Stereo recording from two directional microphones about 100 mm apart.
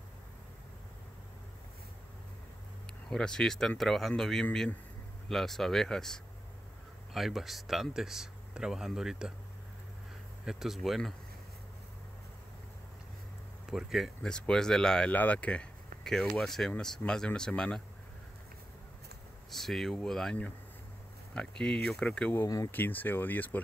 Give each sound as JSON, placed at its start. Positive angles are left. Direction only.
{"t": 3.1, "sound": "speech", "side_deg": 5}
{"t": 10.4, "sound": "speech", "side_deg": -5}
{"t": 13.7, "sound": "speech", "side_deg": -5}
{"t": 19.5, "sound": "speech", "side_deg": 0}
{"t": 22.7, "sound": "speech", "side_deg": 20}